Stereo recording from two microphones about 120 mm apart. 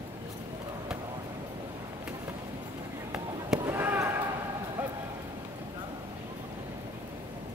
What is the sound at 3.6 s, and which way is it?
Basketball bounce, 15° right (ahead or behind).